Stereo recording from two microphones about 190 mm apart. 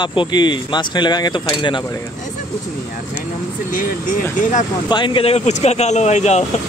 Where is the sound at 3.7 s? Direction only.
45° left (ahead or behind).